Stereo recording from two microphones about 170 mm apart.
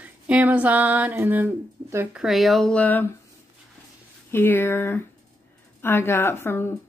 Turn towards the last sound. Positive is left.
turn(degrees=15)  # may be behind; listen again after turning